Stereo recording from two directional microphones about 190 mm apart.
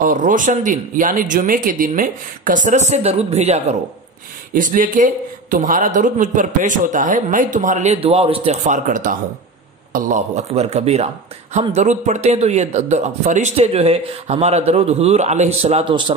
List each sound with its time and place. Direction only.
0.0 s a man's voice: 45° right (ahead or behind); by 16.2 s 25° right (ahead or behind)